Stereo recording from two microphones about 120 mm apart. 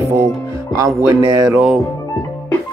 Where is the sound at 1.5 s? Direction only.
5° right (ahead or behind).